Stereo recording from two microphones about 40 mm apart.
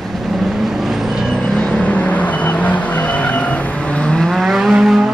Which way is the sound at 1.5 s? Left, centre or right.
Left.